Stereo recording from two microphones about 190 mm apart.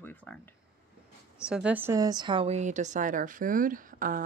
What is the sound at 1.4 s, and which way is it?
A woman's voice, 5° right (ahead or behind).